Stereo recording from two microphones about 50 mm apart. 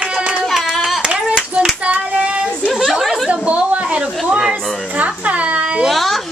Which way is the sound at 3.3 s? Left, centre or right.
Right.